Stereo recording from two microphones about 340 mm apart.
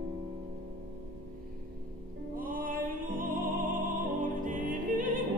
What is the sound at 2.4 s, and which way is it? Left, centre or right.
Music, right.